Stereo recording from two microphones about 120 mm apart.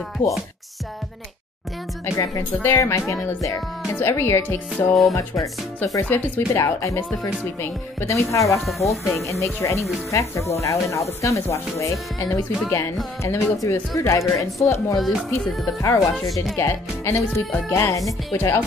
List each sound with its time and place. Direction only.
0.2 s music: 90° left
2.0 s speech: 25° left (ahead or behind)
6.0 s speech: 15° left (ahead or behind)
6.5 s speech: 25° left (ahead or behind)
8.6 s speech: centre (ahead or behind)
9.3 s speech: 25° left (ahead or behind)
15.0 s speech: centre (ahead or behind)
15.8 s speech: 30° left (ahead or behind)